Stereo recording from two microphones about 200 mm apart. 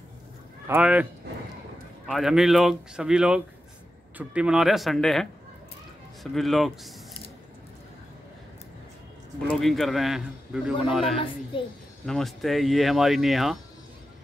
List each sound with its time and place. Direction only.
0.7 s speech: 10° right (ahead or behind)
2.0 s a man's voice: centre (ahead or behind)
6.3 s a man's voice: centre (ahead or behind)
9.5 s a man's voice: centre (ahead or behind)
11.5 s speech: 25° left (ahead or behind)
12.1 s a man's voice: centre (ahead or behind)